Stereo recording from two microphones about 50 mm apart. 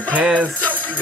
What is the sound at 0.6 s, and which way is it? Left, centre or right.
Music, left.